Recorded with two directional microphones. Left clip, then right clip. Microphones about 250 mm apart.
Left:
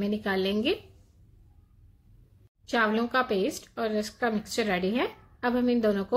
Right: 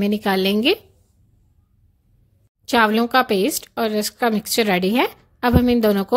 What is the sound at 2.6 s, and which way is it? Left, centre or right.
A woman's voice, right.